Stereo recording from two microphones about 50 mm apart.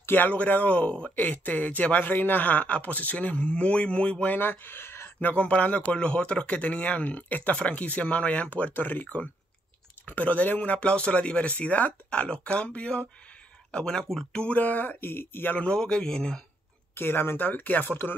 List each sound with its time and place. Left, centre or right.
0.0 s speech: left
1.1 s speech: left
4.4 s speech: left
5.2 s speech: left
10.8 s speech: left
14.6 s speech: left
15.7 s a man's voice: centre
16.9 s speech: left